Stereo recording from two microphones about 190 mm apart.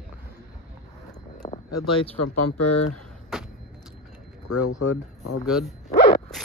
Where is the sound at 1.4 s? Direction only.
25° left (ahead or behind).